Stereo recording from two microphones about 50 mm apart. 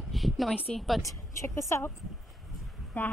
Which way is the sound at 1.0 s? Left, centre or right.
Left.